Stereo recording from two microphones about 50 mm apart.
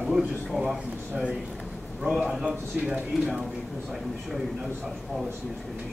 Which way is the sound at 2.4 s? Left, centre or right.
Right.